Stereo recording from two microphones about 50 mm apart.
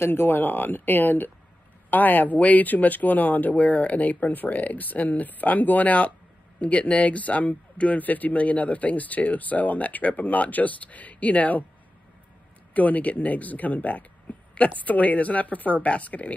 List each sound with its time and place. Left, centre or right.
0.0 s speech: left
12.7 s speech: left